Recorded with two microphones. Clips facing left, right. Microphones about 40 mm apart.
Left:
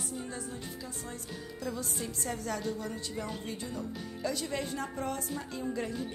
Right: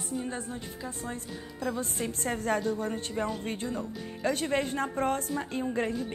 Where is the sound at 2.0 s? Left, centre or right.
Right.